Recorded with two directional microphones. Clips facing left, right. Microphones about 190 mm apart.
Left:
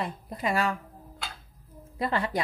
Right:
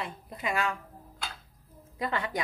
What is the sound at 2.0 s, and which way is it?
Speech, 30° left (ahead or behind).